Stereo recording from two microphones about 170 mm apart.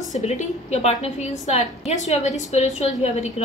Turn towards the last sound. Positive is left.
turn(degrees=40)  # may be behind; listen again after turning